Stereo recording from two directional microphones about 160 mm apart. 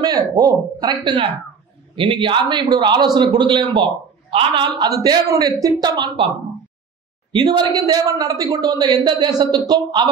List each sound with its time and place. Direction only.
0.0 s a man's voice: 25° right (ahead or behind)
7.3 s a man's voice: 30° right (ahead or behind)